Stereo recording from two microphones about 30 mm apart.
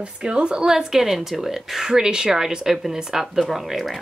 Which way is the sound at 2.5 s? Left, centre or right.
Centre.